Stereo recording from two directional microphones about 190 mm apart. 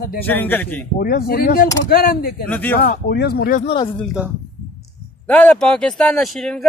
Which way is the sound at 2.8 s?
50° left (ahead or behind).